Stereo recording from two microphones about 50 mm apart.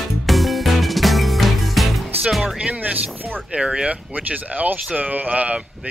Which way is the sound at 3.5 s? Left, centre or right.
Right.